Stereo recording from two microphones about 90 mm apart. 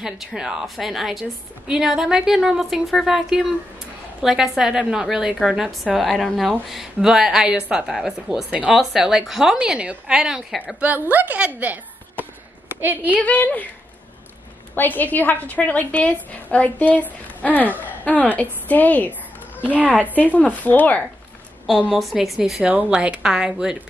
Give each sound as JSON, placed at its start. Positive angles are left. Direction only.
{"t": 0.0, "sound": "a woman's voice", "side_deg": -5}
{"t": 10.8, "sound": "speech", "side_deg": -20}
{"t": 13.2, "sound": "a woman's voice", "side_deg": 15}
{"t": 14.8, "sound": "a woman's voice", "side_deg": 20}
{"t": 19.8, "sound": "a woman's voice", "side_deg": -15}
{"t": 20.2, "sound": "a woman's voice", "side_deg": 15}
{"t": 21.9, "sound": "a woman's voice", "side_deg": 0}